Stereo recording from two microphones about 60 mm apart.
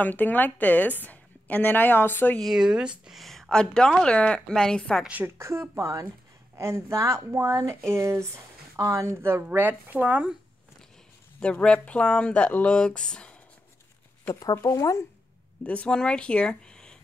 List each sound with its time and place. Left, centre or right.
0.0 s a woman's voice: left
2.4 s speech: centre
3.1 s speech: centre
5.4 s speech: right
11.3 s speech: centre
14.6 s speech: left
15.6 s speech: left